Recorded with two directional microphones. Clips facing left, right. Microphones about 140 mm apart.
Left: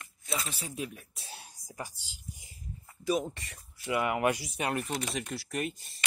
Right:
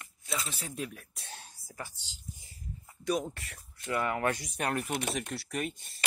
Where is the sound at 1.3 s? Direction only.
15° left (ahead or behind).